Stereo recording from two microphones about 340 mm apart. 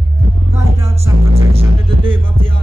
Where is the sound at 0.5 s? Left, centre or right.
Centre.